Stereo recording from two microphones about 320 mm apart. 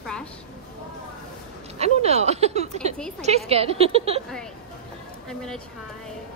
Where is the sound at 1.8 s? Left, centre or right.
Centre.